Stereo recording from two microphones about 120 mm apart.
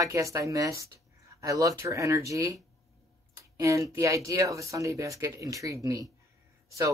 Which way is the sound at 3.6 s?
25° right (ahead or behind).